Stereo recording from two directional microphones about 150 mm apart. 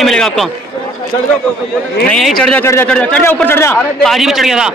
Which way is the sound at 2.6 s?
20° left (ahead or behind).